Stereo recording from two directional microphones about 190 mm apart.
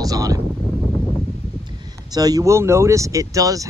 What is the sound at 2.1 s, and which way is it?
Speech, 20° right (ahead or behind).